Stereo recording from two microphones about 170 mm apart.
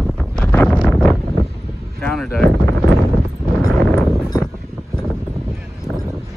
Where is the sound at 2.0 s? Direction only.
5° left (ahead or behind).